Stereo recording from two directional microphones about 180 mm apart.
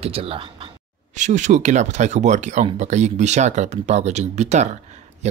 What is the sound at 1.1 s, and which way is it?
Speech, 40° right (ahead or behind).